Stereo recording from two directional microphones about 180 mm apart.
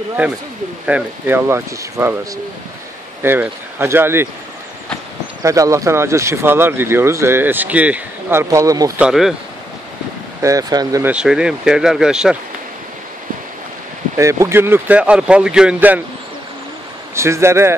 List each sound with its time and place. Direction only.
0.8 s speech: 10° right (ahead or behind)
3.2 s speech: 10° right (ahead or behind)
5.4 s speech: 15° right (ahead or behind)
9.0 s speech: centre (ahead or behind)
10.4 s speech: 20° right (ahead or behind)
11.1 s speech: 5° right (ahead or behind)
14.1 s speech: 15° right (ahead or behind)
17.1 s speech: 15° right (ahead or behind)